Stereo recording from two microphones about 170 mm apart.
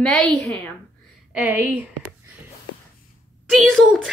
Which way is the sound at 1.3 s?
10° right (ahead or behind).